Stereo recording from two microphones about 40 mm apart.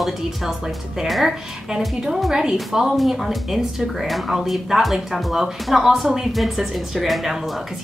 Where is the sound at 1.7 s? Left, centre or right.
Centre.